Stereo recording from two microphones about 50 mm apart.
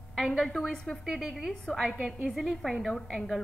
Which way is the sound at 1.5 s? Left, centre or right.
Centre.